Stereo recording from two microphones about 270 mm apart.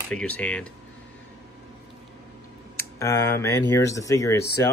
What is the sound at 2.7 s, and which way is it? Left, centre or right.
Speech, centre.